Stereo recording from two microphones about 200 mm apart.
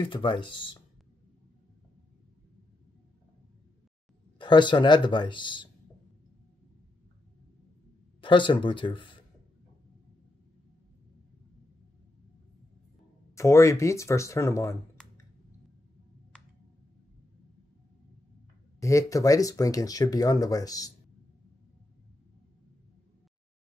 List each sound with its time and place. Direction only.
0.0 s speech: 25° left (ahead or behind)
4.4 s speech: 25° left (ahead or behind)
8.2 s speech: 25° left (ahead or behind)
13.3 s speech: 15° left (ahead or behind)
18.8 s speech: 15° left (ahead or behind)